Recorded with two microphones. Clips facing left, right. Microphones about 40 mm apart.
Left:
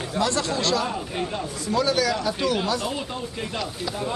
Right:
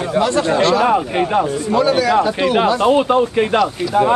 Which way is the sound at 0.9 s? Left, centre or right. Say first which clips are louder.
Right 13 dB; right.